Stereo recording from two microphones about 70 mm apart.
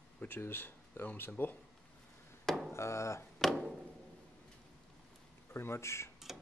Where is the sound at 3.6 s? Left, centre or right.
Centre.